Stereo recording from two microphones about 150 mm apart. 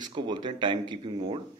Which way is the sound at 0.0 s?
30° right (ahead or behind).